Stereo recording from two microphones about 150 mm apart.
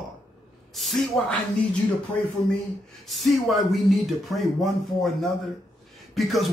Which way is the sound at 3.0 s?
Centre (ahead or behind).